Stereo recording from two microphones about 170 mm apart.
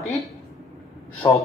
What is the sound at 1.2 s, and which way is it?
Speech, 25° left (ahead or behind).